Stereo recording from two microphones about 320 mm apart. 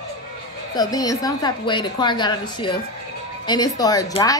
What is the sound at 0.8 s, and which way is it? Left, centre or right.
A woman's voice, centre.